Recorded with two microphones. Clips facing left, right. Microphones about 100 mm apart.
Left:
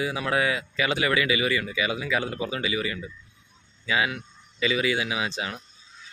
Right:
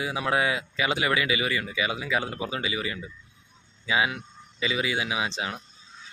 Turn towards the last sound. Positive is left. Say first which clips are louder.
# even
turn(degrees=-20)  # may be behind; listen again after turning